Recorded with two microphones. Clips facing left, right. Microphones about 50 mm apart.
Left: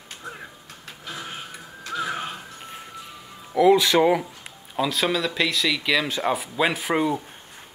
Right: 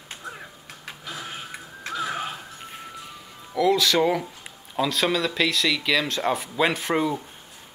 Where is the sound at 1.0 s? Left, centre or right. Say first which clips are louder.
Left 1 dB; centre.